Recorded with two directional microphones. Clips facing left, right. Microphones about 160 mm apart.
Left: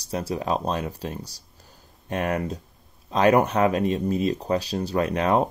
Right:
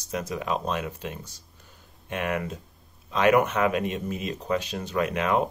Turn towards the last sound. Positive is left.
turn(degrees=35)  # may be behind; listen again after turning